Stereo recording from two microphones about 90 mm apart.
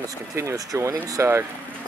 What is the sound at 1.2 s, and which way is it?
Speech, 25° right (ahead or behind).